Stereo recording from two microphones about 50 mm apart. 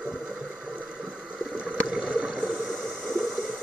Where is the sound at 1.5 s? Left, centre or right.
Centre.